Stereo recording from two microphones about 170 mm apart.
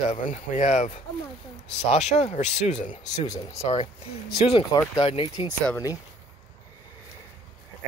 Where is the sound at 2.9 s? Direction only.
20° left (ahead or behind).